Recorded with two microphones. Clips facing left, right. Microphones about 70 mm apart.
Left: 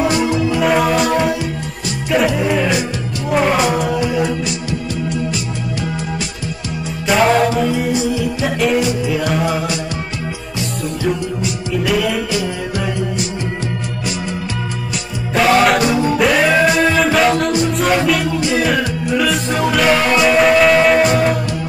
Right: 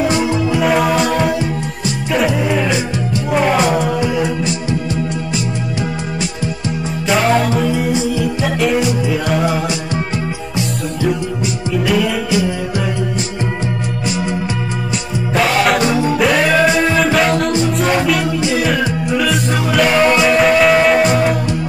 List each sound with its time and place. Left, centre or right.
0.5 s music: centre
4.0 s music: right
7.1 s music: centre
11.7 s music: centre
12.3 s music: right
15.3 s music: centre